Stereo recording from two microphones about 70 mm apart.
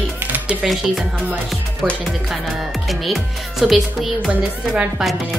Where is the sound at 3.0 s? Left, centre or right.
Centre.